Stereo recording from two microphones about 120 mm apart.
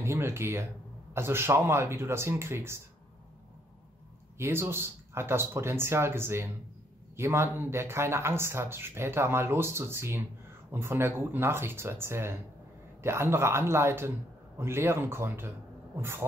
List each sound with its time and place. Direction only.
0.0 s speech: 20° right (ahead or behind)
4.4 s speech: 20° right (ahead or behind)